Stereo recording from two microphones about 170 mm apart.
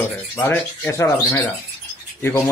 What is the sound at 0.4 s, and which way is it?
Speech, 15° left (ahead or behind).